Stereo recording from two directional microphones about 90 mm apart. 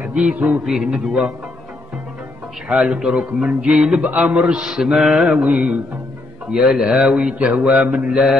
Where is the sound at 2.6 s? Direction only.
15° right (ahead or behind).